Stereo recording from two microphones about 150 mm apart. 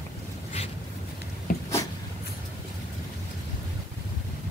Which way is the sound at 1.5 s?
65° left (ahead or behind).